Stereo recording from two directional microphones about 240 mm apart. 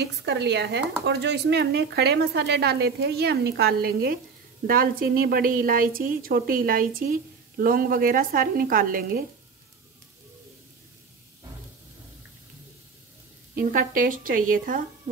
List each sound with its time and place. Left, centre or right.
0.0 s a woman's voice: right
13.6 s a woman's voice: right